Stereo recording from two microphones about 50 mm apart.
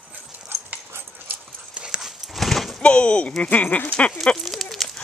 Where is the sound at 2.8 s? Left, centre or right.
Left.